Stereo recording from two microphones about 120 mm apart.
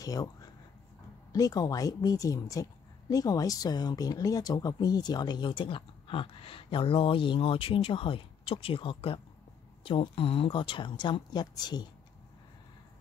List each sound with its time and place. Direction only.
0.0 s a woman's voice: 30° left (ahead or behind)